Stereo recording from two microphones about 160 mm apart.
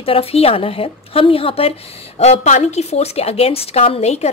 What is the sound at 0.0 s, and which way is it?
A woman's voice, 35° left (ahead or behind).